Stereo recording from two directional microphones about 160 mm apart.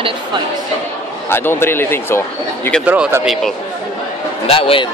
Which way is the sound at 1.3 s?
15° left (ahead or behind).